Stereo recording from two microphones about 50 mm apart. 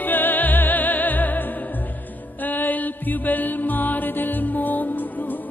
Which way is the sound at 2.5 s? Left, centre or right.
Left.